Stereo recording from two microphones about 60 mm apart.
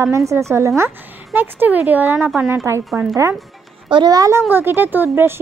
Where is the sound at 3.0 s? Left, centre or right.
Right.